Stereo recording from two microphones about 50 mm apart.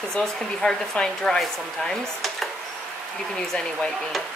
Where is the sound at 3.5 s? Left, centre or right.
Centre.